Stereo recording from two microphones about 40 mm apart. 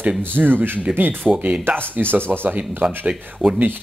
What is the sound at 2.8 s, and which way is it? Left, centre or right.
Speech, right.